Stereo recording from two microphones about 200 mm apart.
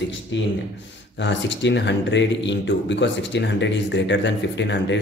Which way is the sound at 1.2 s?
60° left (ahead or behind).